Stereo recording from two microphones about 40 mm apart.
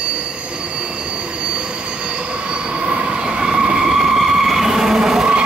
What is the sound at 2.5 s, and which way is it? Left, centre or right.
Train, right.